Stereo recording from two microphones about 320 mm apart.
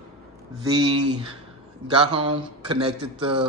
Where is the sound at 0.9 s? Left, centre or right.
Right.